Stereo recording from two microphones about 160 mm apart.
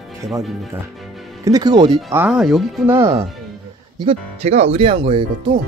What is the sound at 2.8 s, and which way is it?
Speech, 15° right (ahead or behind).